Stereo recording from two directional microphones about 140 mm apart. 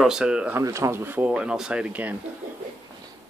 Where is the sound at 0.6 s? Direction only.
20° right (ahead or behind).